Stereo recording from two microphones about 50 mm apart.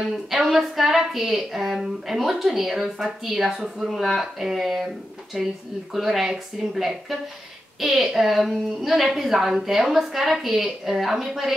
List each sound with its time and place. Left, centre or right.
0.3 s a woman's voice: centre